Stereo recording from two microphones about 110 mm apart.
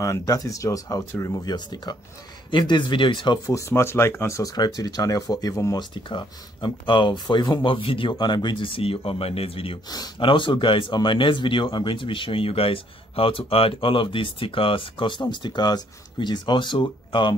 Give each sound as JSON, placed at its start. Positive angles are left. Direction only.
{"t": 0.0, "sound": "speech", "side_deg": 30}
{"t": 1.5, "sound": "speech", "side_deg": 40}
{"t": 3.4, "sound": "speech", "side_deg": 25}
{"t": 5.8, "sound": "speech", "side_deg": 45}
{"t": 9.8, "sound": "speech", "side_deg": 35}